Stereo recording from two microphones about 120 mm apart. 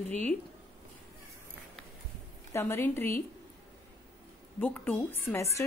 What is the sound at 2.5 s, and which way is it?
Speech, 20° left (ahead or behind).